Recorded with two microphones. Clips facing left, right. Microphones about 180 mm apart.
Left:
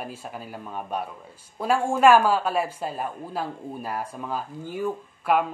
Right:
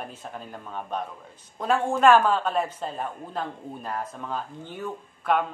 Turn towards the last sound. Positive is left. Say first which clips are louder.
# left 2 dB
turn(degrees=5)  # may be behind; listen again after turning